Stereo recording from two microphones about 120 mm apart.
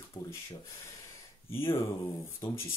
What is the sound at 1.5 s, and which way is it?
Speech, 20° left (ahead or behind).